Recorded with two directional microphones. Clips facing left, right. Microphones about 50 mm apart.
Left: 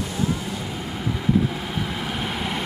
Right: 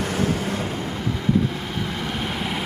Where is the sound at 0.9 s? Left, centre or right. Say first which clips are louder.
Left 1 dB; centre.